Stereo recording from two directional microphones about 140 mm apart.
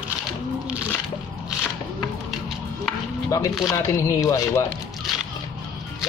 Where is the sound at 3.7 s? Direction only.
20° left (ahead or behind).